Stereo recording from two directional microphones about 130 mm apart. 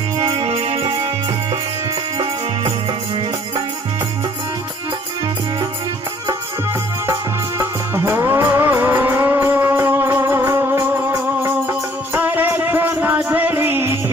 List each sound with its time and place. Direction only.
0.2 s music: 35° right (ahead or behind)
0.5 s music: 50° right (ahead or behind)
0.8 s music: 35° right (ahead or behind)
7.1 s music: 25° right (ahead or behind)